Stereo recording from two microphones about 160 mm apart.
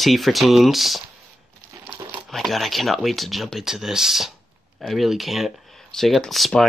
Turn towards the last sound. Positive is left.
turn(degrees=0)  # may be behind; listen again after turning